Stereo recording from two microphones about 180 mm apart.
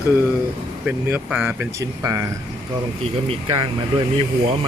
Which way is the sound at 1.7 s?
15° right (ahead or behind).